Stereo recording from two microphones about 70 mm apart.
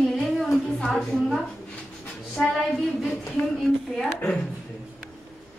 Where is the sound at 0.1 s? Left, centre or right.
Centre.